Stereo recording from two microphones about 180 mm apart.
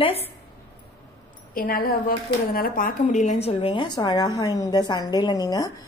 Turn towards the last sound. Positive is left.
turn(degrees=20)  # may be behind; listen again after turning